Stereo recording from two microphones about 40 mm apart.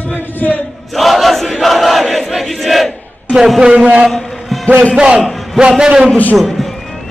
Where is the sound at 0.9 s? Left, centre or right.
Centre.